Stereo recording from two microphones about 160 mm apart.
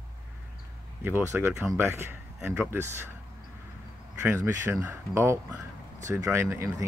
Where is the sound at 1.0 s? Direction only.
15° right (ahead or behind).